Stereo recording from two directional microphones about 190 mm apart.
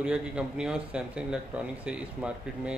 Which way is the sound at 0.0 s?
5° right (ahead or behind).